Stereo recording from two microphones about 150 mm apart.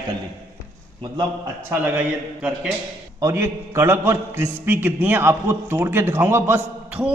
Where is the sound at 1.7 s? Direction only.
10° right (ahead or behind).